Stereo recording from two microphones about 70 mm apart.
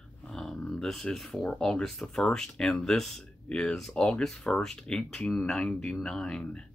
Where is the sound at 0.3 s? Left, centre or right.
Centre.